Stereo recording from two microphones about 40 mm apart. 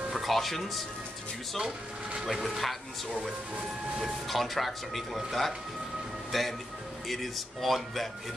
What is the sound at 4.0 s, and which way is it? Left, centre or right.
Speech, centre.